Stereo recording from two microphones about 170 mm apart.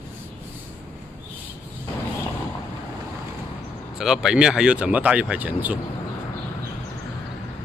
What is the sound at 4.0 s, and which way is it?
Speech, 5° right (ahead or behind).